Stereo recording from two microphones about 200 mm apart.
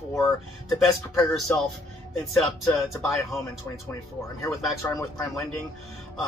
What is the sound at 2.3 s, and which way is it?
Speech, centre (ahead or behind).